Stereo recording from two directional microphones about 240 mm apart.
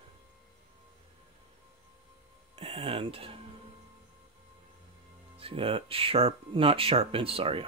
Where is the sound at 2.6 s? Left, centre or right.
Right.